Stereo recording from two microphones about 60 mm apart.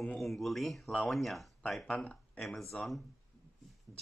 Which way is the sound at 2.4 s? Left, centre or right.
Centre.